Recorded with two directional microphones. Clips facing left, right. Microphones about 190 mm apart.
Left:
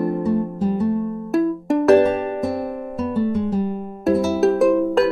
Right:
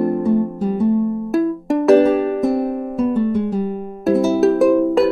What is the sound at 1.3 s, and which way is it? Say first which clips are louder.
Music: right 1 dB; centre (ahead or behind).